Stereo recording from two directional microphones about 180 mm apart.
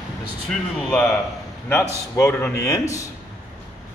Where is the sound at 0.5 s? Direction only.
5° left (ahead or behind).